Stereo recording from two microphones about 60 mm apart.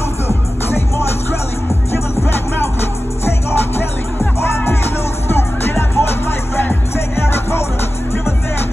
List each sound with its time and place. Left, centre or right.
3.3 s music: left